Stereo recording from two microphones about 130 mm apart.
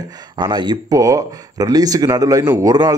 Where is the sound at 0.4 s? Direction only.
35° right (ahead or behind).